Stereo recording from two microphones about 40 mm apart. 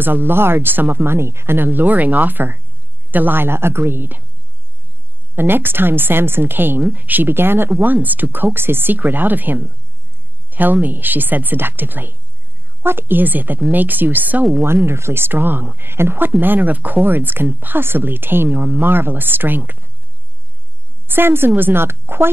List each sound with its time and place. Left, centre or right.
0.0 s a woman's voice: right
0.9 s speech: right
1.7 s a woman's voice: right
5.3 s a woman's voice: right
6.9 s speech: right
7.2 s a woman's voice: right
7.8 s speech: right
8.5 s a woman's voice: right
8.9 s speech: right
14.9 s a woman's voice: right
15.8 s a woman's voice: right
16.3 s a woman's voice: right
21.1 s a woman's voice: right
21.5 s a woman's voice: right